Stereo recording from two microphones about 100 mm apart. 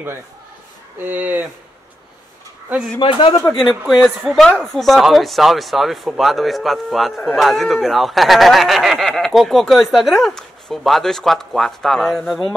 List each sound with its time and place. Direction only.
0.9 s speech: 20° right (ahead or behind)
3.0 s speech: 60° left (ahead or behind)
3.5 s speech: centre (ahead or behind)